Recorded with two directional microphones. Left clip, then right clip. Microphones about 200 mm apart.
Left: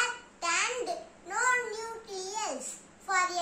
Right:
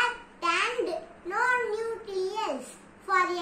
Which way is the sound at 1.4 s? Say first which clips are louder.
Right 3 dB; 30° left (ahead or behind).